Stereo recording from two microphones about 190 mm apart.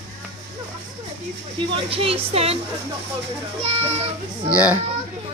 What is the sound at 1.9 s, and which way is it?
Speech, 30° right (ahead or behind).